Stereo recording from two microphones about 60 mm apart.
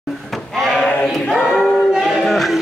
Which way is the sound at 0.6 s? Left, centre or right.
Centre.